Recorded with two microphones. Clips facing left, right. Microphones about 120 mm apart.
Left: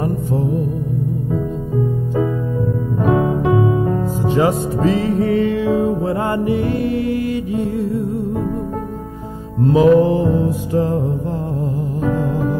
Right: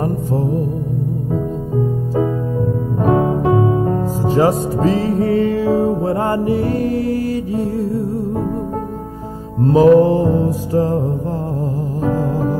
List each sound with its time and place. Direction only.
0.0 s music: 40° right (ahead or behind)
2.1 s music: 35° right (ahead or behind)
9.6 s music: 40° right (ahead or behind)